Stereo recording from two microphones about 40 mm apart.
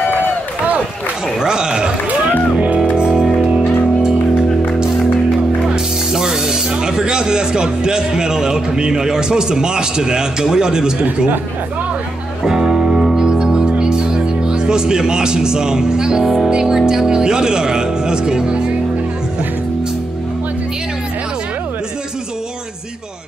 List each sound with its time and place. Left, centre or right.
1.4 s a man's voice: centre
3.0 s music: centre
5.7 s speech: centre
12.4 s speech: centre